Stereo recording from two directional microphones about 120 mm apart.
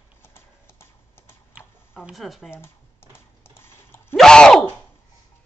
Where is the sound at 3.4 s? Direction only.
20° left (ahead or behind).